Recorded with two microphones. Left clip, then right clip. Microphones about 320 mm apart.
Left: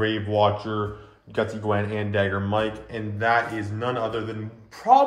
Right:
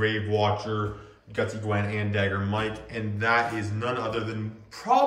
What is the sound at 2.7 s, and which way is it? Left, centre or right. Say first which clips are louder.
Speech: left 1 dB; centre.